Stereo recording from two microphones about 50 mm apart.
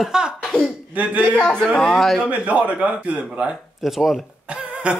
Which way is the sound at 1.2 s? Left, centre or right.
Left.